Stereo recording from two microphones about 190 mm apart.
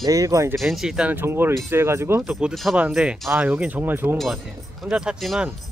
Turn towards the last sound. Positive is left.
turn(degrees=0)  # may be behind; listen again after turning